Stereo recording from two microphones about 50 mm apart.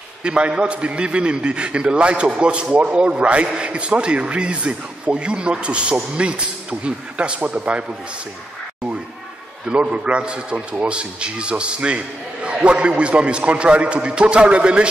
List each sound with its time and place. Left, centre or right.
0.2 s a man's voice: centre
9.7 s a man's voice: right